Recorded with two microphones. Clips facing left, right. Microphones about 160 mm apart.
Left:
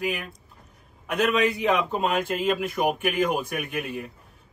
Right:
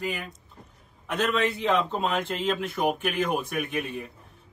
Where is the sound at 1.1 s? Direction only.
10° left (ahead or behind).